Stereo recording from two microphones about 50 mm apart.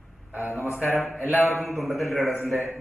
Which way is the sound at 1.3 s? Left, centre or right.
Right.